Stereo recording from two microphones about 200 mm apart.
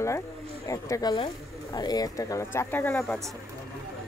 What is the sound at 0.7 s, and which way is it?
Speech, 15° left (ahead or behind).